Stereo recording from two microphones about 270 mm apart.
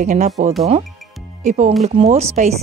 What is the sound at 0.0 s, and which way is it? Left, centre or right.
Speech, right.